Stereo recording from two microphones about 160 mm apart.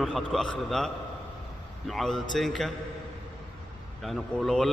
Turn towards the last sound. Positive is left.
turn(degrees=0)  # may be behind; listen again after turning